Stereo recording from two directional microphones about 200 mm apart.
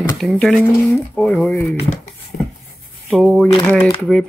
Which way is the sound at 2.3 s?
45° left (ahead or behind).